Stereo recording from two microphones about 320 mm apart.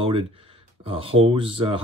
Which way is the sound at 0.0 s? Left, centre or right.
Centre.